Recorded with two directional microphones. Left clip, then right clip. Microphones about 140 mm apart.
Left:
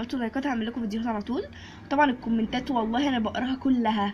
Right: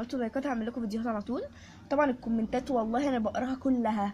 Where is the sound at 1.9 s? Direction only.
35° right (ahead or behind).